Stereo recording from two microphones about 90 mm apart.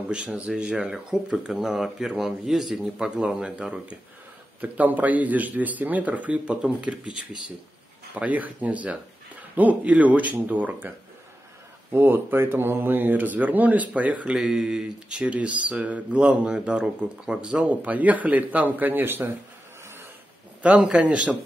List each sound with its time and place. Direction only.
0.1 s speech: 10° right (ahead or behind)
8.1 s speech: 15° right (ahead or behind)
20.8 s speech: 10° right (ahead or behind)